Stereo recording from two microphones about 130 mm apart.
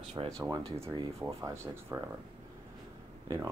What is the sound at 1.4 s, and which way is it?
Speech, 20° right (ahead or behind).